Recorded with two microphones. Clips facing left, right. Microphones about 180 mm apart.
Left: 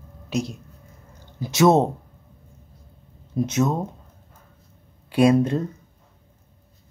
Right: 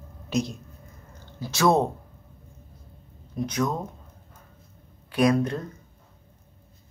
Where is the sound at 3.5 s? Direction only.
25° left (ahead or behind).